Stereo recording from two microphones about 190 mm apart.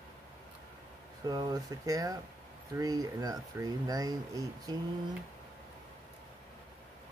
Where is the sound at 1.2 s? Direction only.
20° right (ahead or behind).